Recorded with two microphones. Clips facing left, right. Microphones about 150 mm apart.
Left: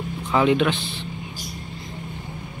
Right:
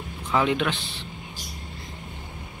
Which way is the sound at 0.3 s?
5° left (ahead or behind).